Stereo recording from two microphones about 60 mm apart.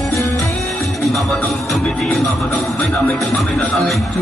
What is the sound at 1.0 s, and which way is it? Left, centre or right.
Music, centre.